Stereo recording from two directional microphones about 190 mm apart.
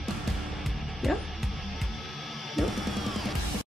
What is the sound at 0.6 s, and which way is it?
Music, centre (ahead or behind).